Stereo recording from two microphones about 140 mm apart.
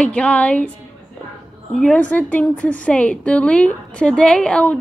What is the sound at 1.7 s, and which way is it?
A woman's voice, 5° left (ahead or behind).